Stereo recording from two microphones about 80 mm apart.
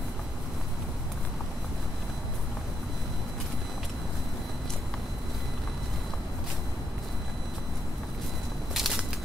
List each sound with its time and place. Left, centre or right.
8.7 s crackle: centre